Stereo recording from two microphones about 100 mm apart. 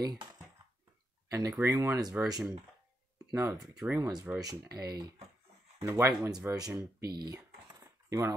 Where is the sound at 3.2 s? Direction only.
35° right (ahead or behind).